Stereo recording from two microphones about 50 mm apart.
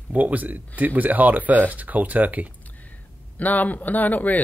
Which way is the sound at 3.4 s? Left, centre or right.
Left.